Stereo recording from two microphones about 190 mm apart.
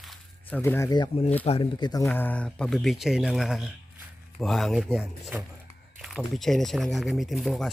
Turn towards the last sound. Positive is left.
turn(degrees=0)  # may be behind; listen again after turning